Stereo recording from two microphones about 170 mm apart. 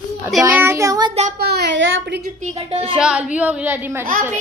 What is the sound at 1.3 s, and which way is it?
A woman's voice, 70° right (ahead or behind).